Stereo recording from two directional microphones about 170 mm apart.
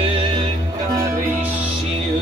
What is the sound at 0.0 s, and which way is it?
Music, 30° right (ahead or behind).